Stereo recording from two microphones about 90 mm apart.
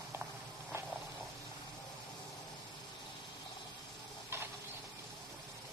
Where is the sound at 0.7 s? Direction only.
30° right (ahead or behind).